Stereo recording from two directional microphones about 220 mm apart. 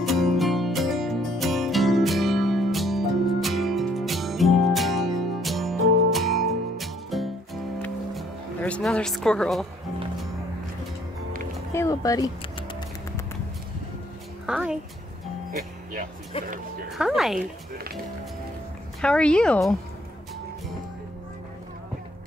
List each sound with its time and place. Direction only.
0.0 s music: centre (ahead or behind)
11.7 s a sound: 15° left (ahead or behind)
14.4 s a woman's voice: 5° right (ahead or behind)
16.3 s speech: 25° left (ahead or behind)
16.9 s a woman's voice: centre (ahead or behind)
18.9 s a woman's voice: 5° left (ahead or behind)